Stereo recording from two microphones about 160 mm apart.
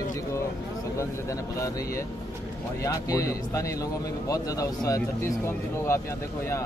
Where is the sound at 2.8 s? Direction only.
20° left (ahead or behind).